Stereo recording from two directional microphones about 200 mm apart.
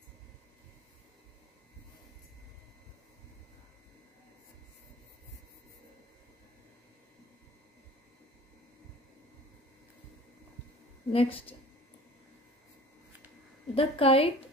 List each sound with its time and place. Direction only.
11.1 s a woman's voice: 30° left (ahead or behind)
13.7 s a woman's voice: 30° left (ahead or behind)